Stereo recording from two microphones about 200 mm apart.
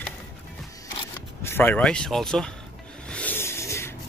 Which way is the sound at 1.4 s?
10° left (ahead or behind).